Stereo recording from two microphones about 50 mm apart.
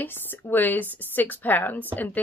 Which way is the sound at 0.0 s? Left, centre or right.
Left.